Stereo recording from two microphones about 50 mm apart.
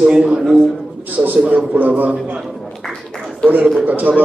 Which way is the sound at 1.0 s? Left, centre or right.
Right.